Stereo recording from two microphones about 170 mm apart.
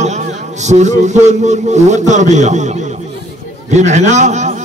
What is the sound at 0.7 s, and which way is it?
A man's voice, 45° right (ahead or behind).